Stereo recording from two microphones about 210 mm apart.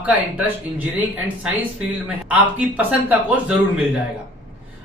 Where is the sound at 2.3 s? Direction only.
5° right (ahead or behind).